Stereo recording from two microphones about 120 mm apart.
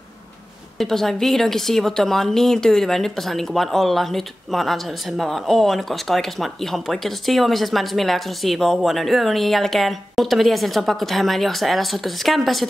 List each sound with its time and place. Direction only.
0.7 s a woman's voice: 5° left (ahead or behind)